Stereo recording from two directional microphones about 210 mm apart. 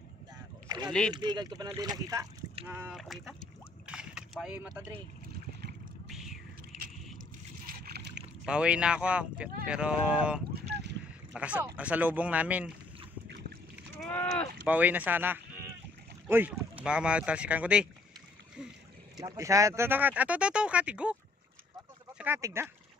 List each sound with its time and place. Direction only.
0.8 s speech: 5° left (ahead or behind)
1.1 s speech: 20° right (ahead or behind)
2.6 s speech: 5° right (ahead or behind)
3.8 s boat: 5° right (ahead or behind)
6.0 s a sound: centre (ahead or behind)
7.6 s boat: 50° right (ahead or behind)
8.5 s speech: 5° right (ahead or behind)
10.5 s boat: 50° right (ahead or behind)
11.3 s speech: 5° right (ahead or behind)
13.9 s speech: 5° left (ahead or behind)
14.7 s speech: 10° right (ahead or behind)
19.1 s speech: 15° right (ahead or behind)
22.2 s speech: 10° right (ahead or behind)